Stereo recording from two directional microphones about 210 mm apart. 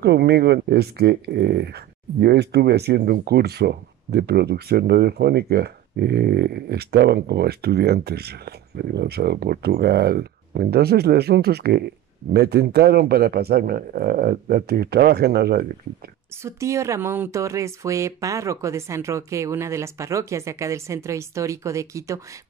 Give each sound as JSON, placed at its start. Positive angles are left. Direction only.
{"t": 0.0, "sound": "speech", "side_deg": -50}
{"t": 16.4, "sound": "speech", "side_deg": -15}